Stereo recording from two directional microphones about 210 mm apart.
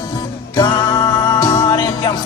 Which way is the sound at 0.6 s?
20° left (ahead or behind).